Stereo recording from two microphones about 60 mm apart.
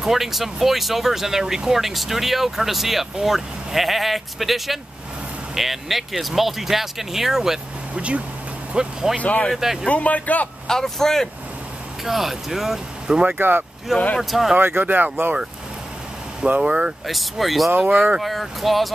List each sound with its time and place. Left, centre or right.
0.0 s speech: centre
7.9 s speech: centre
9.2 s speech: left
9.5 s speech: centre
9.8 s speech: left
10.7 s speech: centre
12.0 s speech: centre
13.0 s speech: centre
13.4 s speech: right
13.9 s speech: centre
14.6 s speech: right
16.4 s speech: centre
17.0 s speech: centre